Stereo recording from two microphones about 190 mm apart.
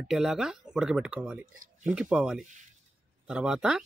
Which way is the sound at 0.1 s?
Centre (ahead or behind).